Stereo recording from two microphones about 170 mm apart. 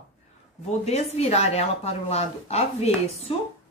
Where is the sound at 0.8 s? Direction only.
40° left (ahead or behind).